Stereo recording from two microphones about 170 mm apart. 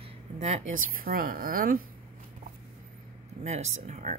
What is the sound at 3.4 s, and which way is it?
Speech, 45° right (ahead or behind).